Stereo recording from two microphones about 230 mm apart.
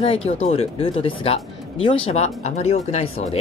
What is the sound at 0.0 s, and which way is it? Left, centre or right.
Speech, left.